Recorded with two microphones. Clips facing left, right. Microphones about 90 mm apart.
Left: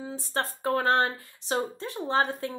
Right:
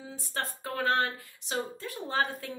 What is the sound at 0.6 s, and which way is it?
Speech, 35° left (ahead or behind).